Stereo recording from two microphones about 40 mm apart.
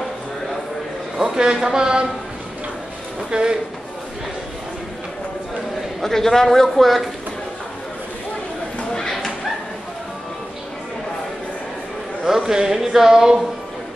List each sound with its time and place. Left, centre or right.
1.1 s a man's voice: centre
3.3 s speech: right
5.9 s a man's voice: centre
12.3 s speech: centre